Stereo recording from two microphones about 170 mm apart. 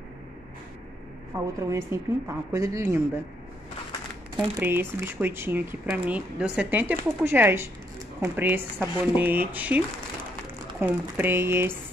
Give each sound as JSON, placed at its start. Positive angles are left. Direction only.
{"t": 1.3, "sound": "speech", "side_deg": -15}
{"t": 4.6, "sound": "speech", "side_deg": -15}